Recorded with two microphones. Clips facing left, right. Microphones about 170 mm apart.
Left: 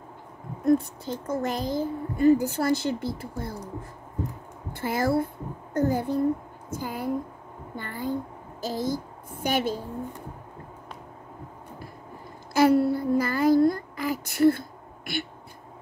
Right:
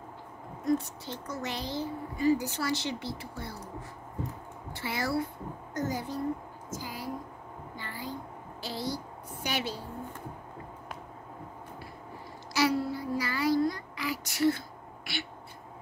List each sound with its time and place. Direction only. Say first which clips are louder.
1.2 s a child's voice: left 8 dB; 50° left (ahead or behind)
4.7 s a woman's voice: left 7 dB; 50° left (ahead or behind)
7.7 s a sound: left 10 dB; 55° left (ahead or behind)
12.5 s child singing: left 8 dB; 55° left (ahead or behind)
15.1 s a child's voice: left 7 dB; 50° left (ahead or behind)